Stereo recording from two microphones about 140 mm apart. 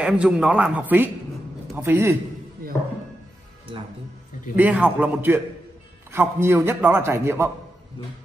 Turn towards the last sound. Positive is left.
turn(degrees=-20)  # may be behind; listen again after turning